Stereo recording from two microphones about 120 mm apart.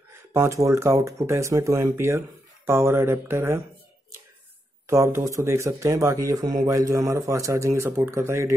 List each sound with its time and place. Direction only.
0.1 s speech: 25° right (ahead or behind)
4.8 s speech: 25° right (ahead or behind)